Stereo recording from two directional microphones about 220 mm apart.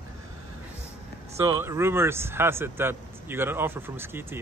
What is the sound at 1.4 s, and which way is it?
Speech, 15° right (ahead or behind).